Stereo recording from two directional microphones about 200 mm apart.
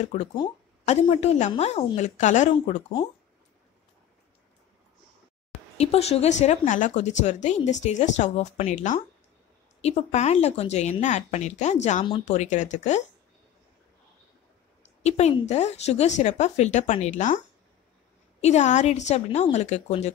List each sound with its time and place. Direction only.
0.0 s speech: 35° left (ahead or behind)
5.8 s speech: 30° left (ahead or behind)
15.0 s speech: 35° left (ahead or behind)
18.4 s speech: 35° left (ahead or behind)